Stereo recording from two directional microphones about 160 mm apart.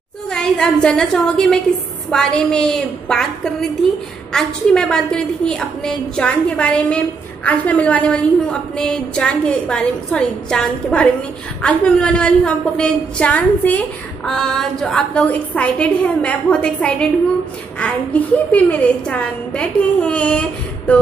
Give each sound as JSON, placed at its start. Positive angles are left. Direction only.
{"t": 0.3, "sound": "a woman's voice", "side_deg": 5}
{"t": 4.3, "sound": "a woman's voice", "side_deg": 5}